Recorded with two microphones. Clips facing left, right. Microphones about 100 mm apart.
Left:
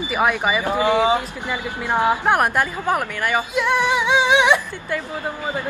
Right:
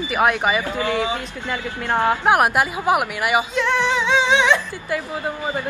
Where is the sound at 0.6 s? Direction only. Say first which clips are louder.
Left 5 dB; 20° left (ahead or behind).